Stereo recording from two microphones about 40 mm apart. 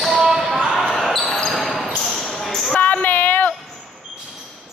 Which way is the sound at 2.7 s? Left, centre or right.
Left.